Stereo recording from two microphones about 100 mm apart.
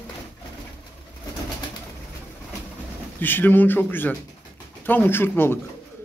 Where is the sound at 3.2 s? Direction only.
20° left (ahead or behind).